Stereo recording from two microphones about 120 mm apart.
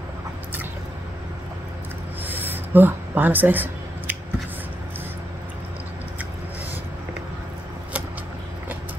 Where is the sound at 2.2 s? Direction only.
15° right (ahead or behind).